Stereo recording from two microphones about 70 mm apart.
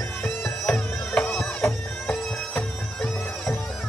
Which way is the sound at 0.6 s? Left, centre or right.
Centre.